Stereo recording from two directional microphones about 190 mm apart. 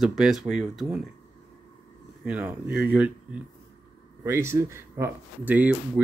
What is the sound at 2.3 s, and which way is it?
Speech, 5° right (ahead or behind).